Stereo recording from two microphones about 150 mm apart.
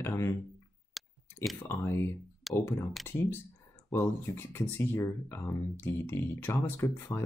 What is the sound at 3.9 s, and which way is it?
Speech, 15° left (ahead or behind).